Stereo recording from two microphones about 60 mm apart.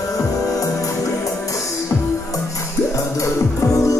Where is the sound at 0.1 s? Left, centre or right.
Left.